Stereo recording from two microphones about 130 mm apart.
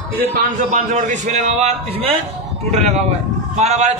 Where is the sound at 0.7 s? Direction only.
70° right (ahead or behind); by 2.1 s 50° right (ahead or behind).